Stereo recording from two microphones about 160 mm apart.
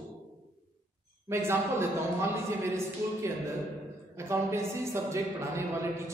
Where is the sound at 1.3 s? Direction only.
15° right (ahead or behind).